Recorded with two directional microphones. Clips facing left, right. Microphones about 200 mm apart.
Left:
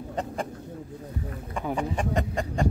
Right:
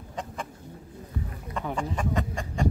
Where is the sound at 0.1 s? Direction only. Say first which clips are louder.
Left 5 dB; 40° left (ahead or behind).